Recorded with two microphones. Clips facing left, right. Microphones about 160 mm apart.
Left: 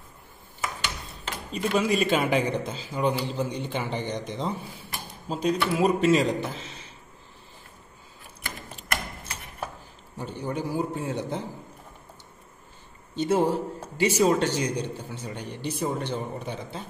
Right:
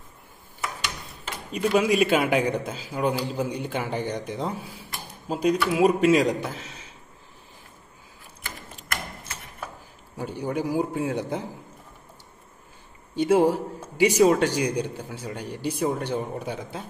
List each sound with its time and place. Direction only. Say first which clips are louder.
1.5 s a man's voice: right 3 dB; 10° right (ahead or behind)
10.1 s a man's voice: right 3 dB; 10° right (ahead or behind)
13.1 s a man's voice: right 4 dB; 10° right (ahead or behind)